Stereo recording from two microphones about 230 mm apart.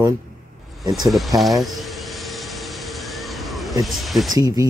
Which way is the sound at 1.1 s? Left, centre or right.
Centre.